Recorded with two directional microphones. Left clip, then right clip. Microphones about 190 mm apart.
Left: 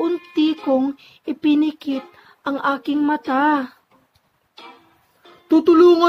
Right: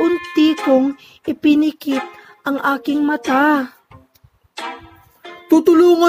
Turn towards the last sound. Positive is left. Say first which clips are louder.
# right 1 dB
turn(degrees=-25)  # may be behind; listen again after turning